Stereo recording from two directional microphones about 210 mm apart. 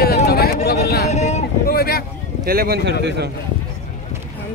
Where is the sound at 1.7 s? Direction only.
45° left (ahead or behind).